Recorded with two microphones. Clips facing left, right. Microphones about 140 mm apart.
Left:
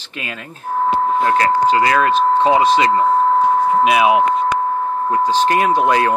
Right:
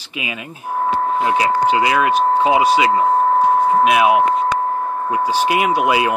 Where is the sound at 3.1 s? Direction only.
45° right (ahead or behind).